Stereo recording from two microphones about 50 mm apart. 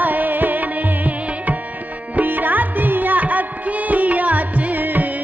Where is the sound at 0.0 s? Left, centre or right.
Right.